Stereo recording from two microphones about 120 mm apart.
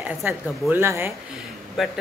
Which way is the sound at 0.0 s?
15° right (ahead or behind).